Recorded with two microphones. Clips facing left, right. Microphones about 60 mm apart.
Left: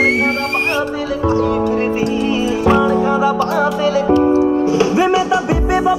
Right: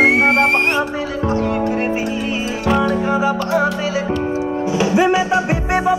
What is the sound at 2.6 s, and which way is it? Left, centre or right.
Music, centre.